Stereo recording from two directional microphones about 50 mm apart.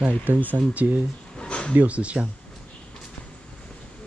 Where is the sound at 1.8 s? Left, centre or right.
Right.